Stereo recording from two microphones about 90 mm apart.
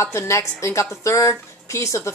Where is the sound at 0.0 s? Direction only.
30° left (ahead or behind).